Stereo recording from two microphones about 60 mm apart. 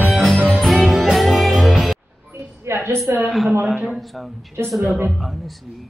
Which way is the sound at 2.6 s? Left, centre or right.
Right.